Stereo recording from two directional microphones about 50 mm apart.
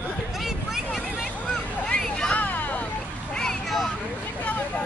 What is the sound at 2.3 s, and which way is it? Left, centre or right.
Vehicle, left.